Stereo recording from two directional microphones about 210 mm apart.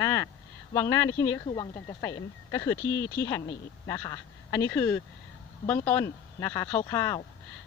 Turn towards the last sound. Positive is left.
turn(degrees=15)  # may be behind; listen again after turning